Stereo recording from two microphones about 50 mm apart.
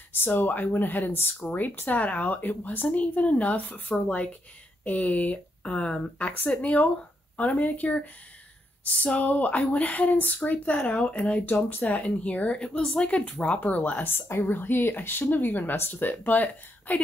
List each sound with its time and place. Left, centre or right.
0.1 s speech: left
4.8 s speech: left
12.5 s speech: centre
14.4 s speech: left